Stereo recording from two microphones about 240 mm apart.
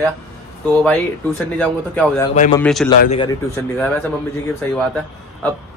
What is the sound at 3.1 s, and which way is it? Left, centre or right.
Speech, centre.